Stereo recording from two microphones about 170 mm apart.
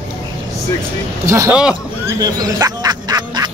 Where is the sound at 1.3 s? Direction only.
15° right (ahead or behind).